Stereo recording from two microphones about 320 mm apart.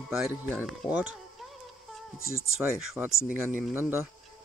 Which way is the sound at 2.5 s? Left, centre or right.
Centre.